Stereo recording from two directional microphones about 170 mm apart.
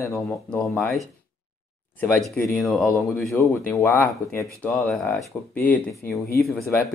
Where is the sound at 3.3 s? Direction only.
15° left (ahead or behind).